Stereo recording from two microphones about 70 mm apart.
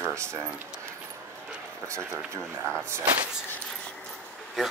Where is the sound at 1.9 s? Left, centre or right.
Right.